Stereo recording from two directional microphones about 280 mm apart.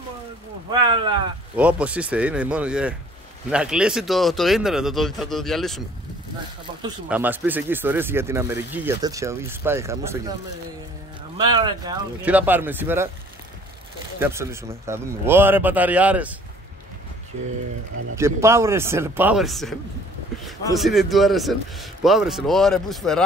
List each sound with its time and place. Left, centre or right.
0.7 s speech: centre
1.6 s a man's voice: centre
6.7 s a sound: centre
7.1 s speech: centre
11.3 s speech: centre
14.2 s speech: centre
18.1 s speech: centre
20.7 s a man's voice: centre